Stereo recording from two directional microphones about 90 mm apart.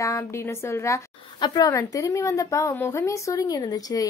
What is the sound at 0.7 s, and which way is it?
Speech, 35° left (ahead or behind).